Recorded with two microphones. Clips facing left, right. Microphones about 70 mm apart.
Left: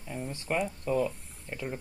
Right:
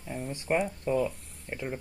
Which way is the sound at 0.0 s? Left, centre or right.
Centre.